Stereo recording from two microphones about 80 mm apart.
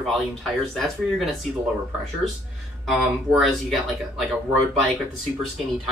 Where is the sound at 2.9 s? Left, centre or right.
Centre.